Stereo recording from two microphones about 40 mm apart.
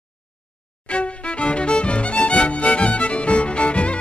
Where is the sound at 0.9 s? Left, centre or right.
Left.